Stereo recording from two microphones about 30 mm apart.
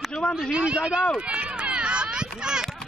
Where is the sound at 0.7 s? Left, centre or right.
Right.